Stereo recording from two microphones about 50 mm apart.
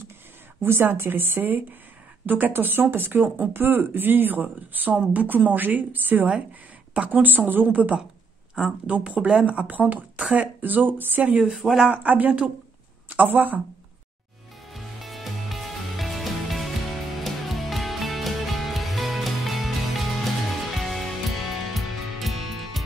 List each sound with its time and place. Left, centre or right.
0.7 s a woman's voice: right
7.6 s a woman's voice: right
11.3 s speech: centre
11.9 s speech: right
14.7 s music: centre